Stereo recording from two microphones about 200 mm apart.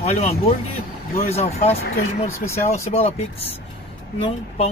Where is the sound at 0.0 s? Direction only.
30° left (ahead or behind).